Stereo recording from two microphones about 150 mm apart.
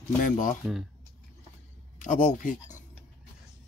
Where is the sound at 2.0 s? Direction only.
55° left (ahead or behind).